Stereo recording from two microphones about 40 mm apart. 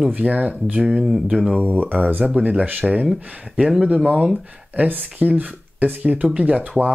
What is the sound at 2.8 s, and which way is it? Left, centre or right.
Speech, right.